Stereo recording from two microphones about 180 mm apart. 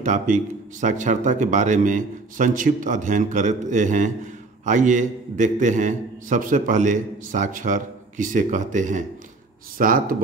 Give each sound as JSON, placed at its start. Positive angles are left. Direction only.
{"t": 0.0, "sound": "a man's voice", "side_deg": -45}